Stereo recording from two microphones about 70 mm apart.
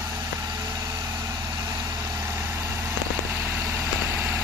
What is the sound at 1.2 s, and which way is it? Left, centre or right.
Vehicle, right.